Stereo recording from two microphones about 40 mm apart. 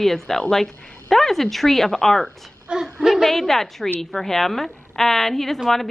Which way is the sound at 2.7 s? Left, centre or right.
Right.